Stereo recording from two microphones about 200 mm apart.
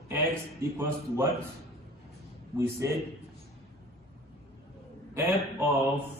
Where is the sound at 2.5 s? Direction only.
15° right (ahead or behind).